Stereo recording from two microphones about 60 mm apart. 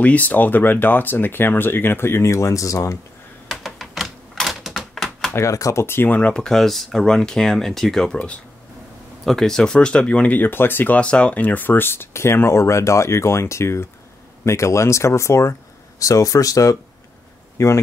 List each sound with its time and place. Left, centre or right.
0.0 s speech: left
3.4 s typewriter: centre
5.3 s speech: left
6.0 s speech: left
6.3 s speech: centre; by 11.0 s left
11.0 s speech: centre; by 15.5 s left
16.0 s speech: left
17.6 s speech: left